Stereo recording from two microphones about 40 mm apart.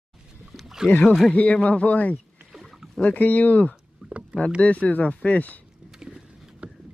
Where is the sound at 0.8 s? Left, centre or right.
Left.